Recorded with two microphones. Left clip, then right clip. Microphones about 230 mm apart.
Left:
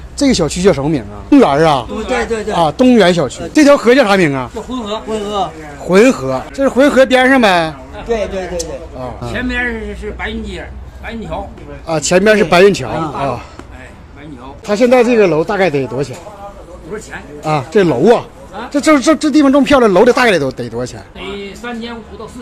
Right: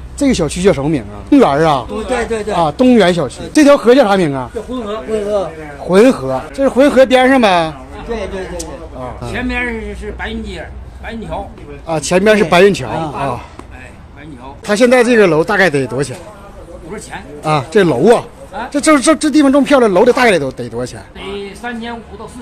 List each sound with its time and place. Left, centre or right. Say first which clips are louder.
0.2 s speech: left 1 dB; centre
5.9 s speech: even; centre
8.1 s a man's voice: left 5 dB; left
9.2 s speech: left 1 dB; centre
14.7 s speech: even; centre
17.5 s speech: even; centre
21.2 s speech: right 1 dB; right